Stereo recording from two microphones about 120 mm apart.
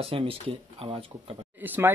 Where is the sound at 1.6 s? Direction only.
15° right (ahead or behind).